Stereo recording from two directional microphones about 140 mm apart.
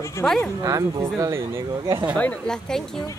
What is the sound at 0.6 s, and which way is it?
Speech, 25° right (ahead or behind).